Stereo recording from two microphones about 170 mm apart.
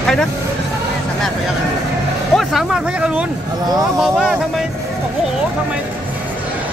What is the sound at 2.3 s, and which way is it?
Speech, centre (ahead or behind).